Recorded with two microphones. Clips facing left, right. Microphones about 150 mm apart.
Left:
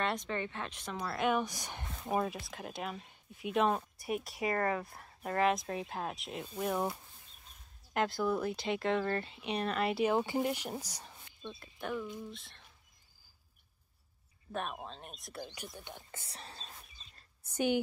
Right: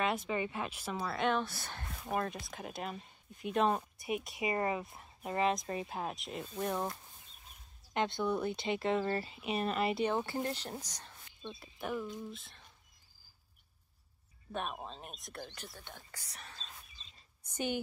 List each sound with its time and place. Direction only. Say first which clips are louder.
0.0 s speech: right 1 dB; 5° right (ahead or behind); by 1.9 s 15° left (ahead or behind)
2.0 s speech: left 2 dB; 5° left (ahead or behind)
4.6 s speech: left 1 dB; 10° right (ahead or behind)
4.8 s speech: left 2 dB; centre (ahead or behind)
10.1 s speech: left 4 dB; 15° left (ahead or behind)
11.6 s speech: even; 5° right (ahead or behind)
14.5 s speech: even; centre (ahead or behind)
15.4 s speech: left 3 dB; 10° left (ahead or behind); by 16.7 s 30° left (ahead or behind)
17.5 s a sound: left 5 dB; 10° left (ahead or behind)